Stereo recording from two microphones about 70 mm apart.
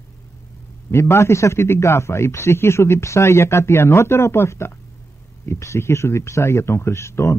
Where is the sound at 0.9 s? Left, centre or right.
Left.